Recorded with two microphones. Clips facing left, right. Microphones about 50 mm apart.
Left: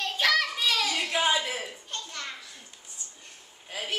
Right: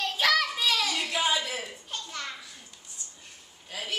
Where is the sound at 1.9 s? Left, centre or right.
Centre.